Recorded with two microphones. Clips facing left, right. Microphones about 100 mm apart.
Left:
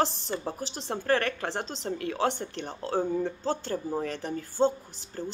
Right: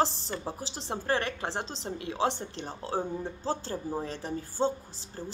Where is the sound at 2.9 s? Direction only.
10° right (ahead or behind).